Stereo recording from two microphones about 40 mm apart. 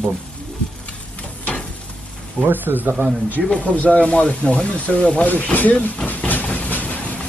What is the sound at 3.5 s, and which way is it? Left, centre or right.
Speech, left.